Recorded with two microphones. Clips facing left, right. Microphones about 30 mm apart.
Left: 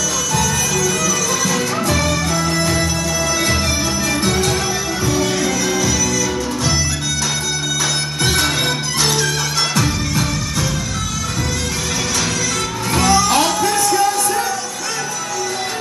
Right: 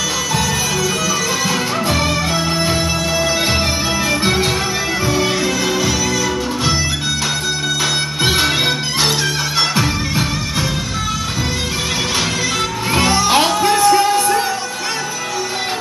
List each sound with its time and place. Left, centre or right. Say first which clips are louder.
0.4 s music: left 1 dB; right
4.1 s music: right 1 dB; right
8.2 s music: right 2 dB; right
12.9 s music: even; right